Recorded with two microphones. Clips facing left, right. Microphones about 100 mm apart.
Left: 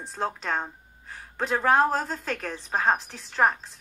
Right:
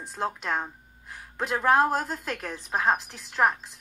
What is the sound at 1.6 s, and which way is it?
Speech, 5° right (ahead or behind).